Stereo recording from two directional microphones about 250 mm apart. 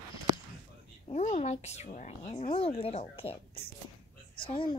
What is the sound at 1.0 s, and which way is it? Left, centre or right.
Speech, left.